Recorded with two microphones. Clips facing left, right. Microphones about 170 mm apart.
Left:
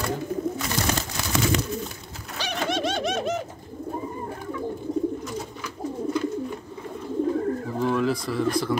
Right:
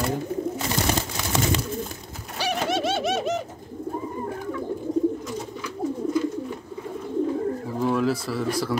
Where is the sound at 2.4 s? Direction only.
5° right (ahead or behind).